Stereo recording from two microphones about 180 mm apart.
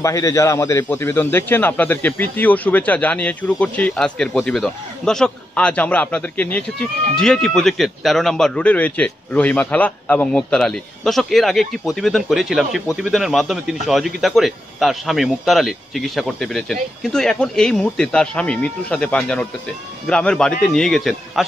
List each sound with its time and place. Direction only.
0.0 s a man's voice: 15° left (ahead or behind); by 21.5 s centre (ahead or behind)